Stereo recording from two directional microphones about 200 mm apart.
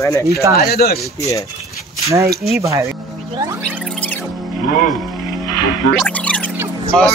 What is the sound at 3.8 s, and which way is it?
Music, 5° left (ahead or behind).